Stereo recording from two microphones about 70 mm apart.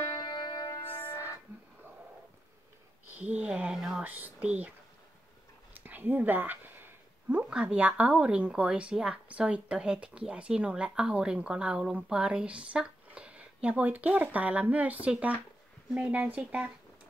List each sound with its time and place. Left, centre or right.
0.2 s music: left
0.7 s music: left
3.2 s speech: centre
3.7 s speech: centre
4.0 s speech: right
5.8 s a sound: right
7.6 s a woman's voice: right